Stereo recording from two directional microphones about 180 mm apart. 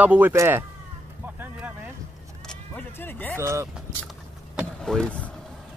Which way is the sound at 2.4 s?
10° left (ahead or behind).